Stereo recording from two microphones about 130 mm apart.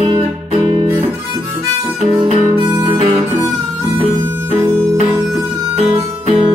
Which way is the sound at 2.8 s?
40° right (ahead or behind).